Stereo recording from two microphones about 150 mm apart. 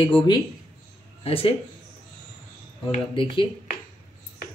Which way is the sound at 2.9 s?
35° left (ahead or behind).